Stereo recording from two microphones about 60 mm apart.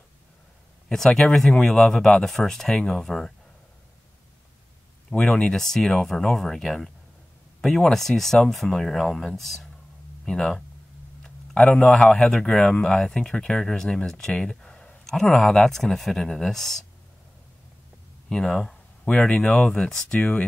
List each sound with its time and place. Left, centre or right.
0.8 s speech: centre
5.1 s speech: centre
18.3 s speech: centre
19.0 s speech: centre